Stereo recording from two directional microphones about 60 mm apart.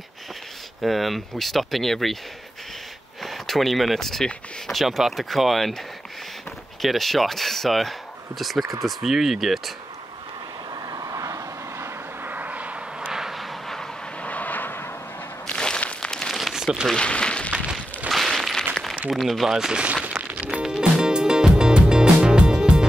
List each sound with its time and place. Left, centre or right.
0.8 s speech: centre
3.2 s speech: centre
6.8 s speech: centre
10.9 s vehicle: right
12.3 s vehicle: right
13.1 s vehicle: centre
14.2 s vehicle: left
15.4 s a sound: centre
16.3 s crumpling: centre
16.9 s speech: centre
18.1 s a sound: centre
19.0 s speech: centre
19.5 s a sound: centre
20.5 s music: centre